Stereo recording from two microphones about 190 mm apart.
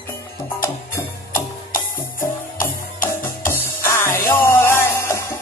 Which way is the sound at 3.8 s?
15° left (ahead or behind).